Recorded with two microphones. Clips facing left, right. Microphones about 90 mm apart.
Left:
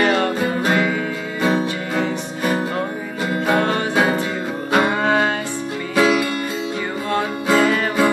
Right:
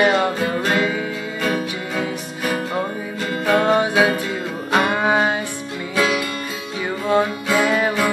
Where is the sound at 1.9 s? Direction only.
5° right (ahead or behind).